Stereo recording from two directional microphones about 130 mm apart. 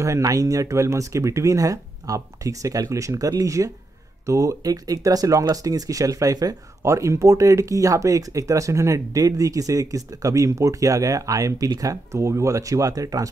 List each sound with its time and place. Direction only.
0.0 s speech: 25° right (ahead or behind)